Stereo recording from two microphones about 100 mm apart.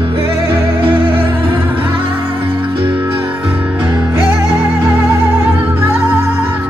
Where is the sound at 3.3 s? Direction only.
10° right (ahead or behind).